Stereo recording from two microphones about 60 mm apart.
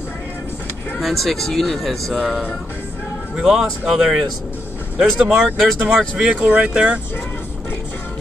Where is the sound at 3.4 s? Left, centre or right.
Centre.